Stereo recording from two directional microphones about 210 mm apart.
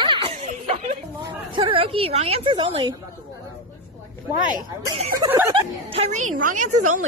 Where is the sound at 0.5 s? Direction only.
35° right (ahead or behind).